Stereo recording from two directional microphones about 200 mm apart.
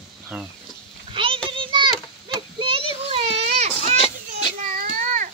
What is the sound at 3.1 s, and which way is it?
Children playing, 30° right (ahead or behind).